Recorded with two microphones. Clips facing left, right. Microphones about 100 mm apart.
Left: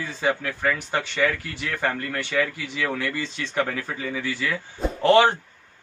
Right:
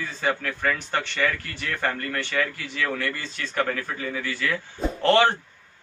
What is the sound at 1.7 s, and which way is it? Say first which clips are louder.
A man's voice: left 1 dB; 10° left (ahead or behind).